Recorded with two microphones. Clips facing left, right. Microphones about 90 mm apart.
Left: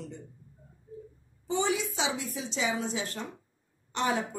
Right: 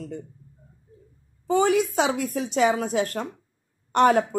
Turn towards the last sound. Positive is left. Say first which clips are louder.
# right 11 dB
turn(degrees=-55)  # may be behind; listen again after turning